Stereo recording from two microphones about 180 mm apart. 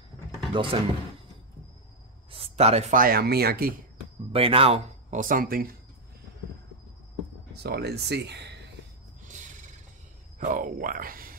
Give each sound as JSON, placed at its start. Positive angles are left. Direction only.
{"t": 0.5, "sound": "speech", "side_deg": -25}
{"t": 2.3, "sound": "speech", "side_deg": -35}
{"t": 3.0, "sound": "speech", "side_deg": -60}
{"t": 4.3, "sound": "speech", "side_deg": -30}
{"t": 7.6, "sound": "speech", "side_deg": -65}
{"t": 10.4, "sound": "speech", "side_deg": -50}